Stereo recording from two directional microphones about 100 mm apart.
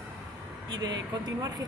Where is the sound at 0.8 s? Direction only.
40° right (ahead or behind).